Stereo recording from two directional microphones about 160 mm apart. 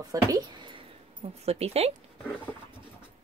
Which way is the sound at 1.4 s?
40° right (ahead or behind).